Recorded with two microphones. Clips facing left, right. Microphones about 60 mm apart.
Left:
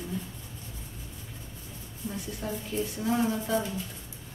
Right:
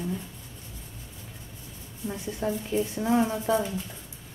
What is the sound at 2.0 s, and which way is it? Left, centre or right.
A woman's voice, right.